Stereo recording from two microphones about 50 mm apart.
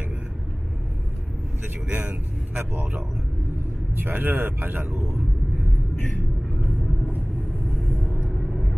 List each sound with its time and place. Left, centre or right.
1.9 s speech: right
3.9 s a man's voice: right
7.7 s vehicle: centre